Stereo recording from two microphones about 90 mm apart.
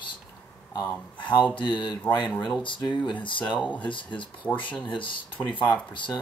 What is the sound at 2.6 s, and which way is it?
Speech, 65° left (ahead or behind).